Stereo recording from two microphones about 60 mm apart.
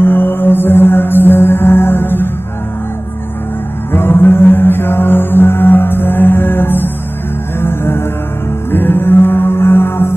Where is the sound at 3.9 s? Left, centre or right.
Left.